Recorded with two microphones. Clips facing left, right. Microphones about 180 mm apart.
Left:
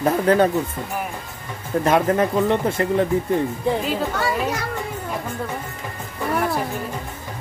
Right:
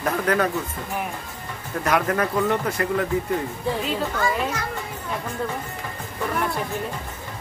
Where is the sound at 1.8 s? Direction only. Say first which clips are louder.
Left 4 dB; 25° left (ahead or behind).